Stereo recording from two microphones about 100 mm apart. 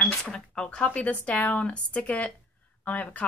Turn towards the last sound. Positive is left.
turn(degrees=15)  # may be behind; listen again after turning